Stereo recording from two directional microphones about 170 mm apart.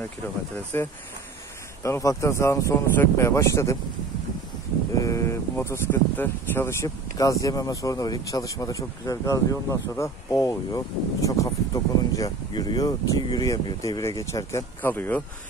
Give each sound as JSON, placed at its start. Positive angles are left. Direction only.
{"t": 0.7, "sound": "speech", "side_deg": 15}
{"t": 4.9, "sound": "speech", "side_deg": 20}